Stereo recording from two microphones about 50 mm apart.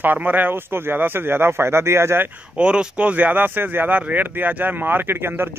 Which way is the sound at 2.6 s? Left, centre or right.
Right.